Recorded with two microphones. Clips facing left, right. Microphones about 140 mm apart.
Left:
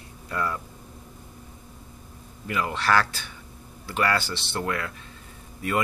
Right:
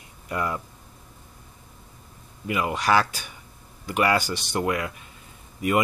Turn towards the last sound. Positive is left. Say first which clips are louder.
# right 4 dB
turn(degrees=-15)  # may be behind; listen again after turning